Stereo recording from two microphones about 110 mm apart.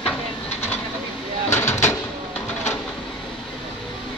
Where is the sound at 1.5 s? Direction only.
25° left (ahead or behind).